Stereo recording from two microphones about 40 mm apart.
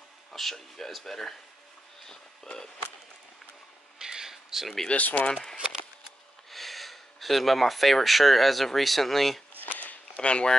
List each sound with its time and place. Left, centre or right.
0.3 s speech: centre
4.0 s a sound: centre
4.8 s speech: left
5.3 s speech: centre
6.5 s speech: centre
9.8 s a sound: left
10.2 s speech: left